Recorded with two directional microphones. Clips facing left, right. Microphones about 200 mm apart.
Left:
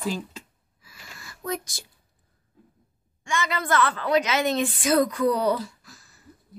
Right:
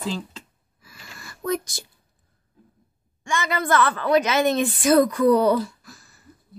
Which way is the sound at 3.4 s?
50° right (ahead or behind).